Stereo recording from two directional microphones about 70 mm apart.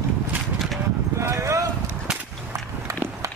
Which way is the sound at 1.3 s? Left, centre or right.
Right.